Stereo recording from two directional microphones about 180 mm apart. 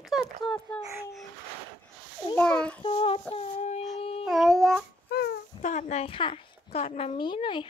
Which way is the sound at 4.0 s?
35° left (ahead or behind).